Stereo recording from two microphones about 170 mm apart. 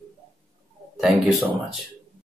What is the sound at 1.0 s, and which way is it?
Speech, centre (ahead or behind).